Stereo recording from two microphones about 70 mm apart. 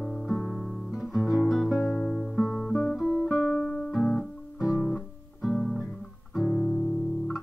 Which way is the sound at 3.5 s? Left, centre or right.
Centre.